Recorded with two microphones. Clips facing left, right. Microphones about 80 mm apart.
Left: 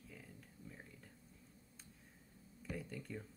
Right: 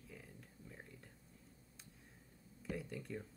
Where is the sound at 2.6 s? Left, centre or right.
Centre.